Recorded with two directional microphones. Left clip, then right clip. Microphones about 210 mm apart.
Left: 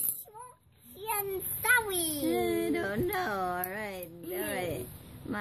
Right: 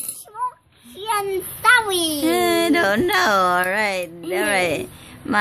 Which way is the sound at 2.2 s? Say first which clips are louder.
Right 11 dB; 45° right (ahead or behind).